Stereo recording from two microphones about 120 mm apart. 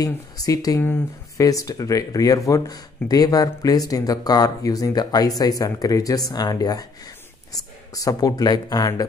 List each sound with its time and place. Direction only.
0.0 s speech: 30° left (ahead or behind)